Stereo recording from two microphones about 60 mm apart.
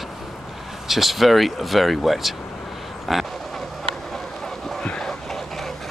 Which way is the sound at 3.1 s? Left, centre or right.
Centre.